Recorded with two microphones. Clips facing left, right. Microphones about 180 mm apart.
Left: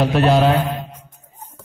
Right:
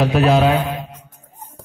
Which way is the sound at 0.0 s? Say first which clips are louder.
Even; centre (ahead or behind).